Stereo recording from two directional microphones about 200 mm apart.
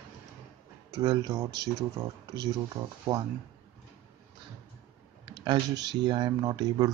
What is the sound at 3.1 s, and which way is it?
Speech, 15° right (ahead or behind).